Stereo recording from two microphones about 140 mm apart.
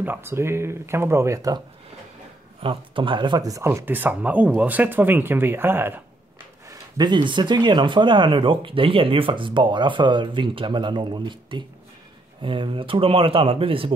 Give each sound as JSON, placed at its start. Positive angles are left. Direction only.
{"t": 0.0, "sound": "speech", "side_deg": -15}
{"t": 2.6, "sound": "speech", "side_deg": -35}
{"t": 6.7, "sound": "speech", "side_deg": -30}